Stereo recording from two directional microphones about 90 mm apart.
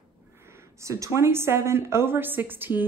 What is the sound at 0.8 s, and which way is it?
Speech, 35° right (ahead or behind).